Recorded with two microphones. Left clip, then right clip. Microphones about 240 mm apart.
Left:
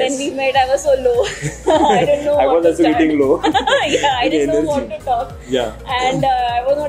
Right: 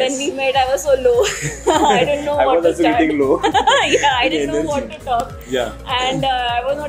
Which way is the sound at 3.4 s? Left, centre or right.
Right.